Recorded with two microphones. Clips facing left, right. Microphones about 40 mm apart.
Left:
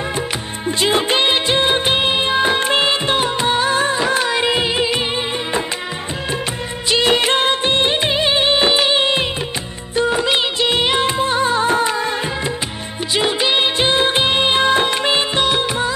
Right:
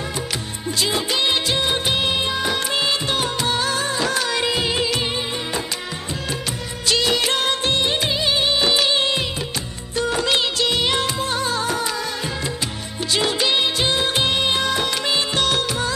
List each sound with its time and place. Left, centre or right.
0.7 s music of bollywood: left
6.9 s music of bollywood: left
9.9 s music: left
10.7 s music of bollywood: left
13.1 s music of bollywood: left
15.4 s music: left